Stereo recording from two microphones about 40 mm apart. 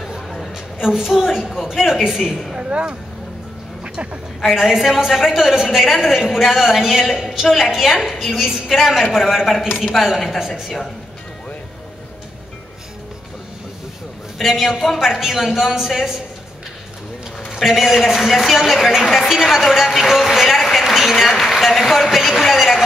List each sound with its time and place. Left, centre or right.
0.7 s a woman's voice: centre
2.7 s speech: right
3.8 s a sound: right
4.5 s a woman's voice: centre
14.4 s a woman's voice: centre
17.6 s a woman's voice: centre
19.2 s a woman's voice: centre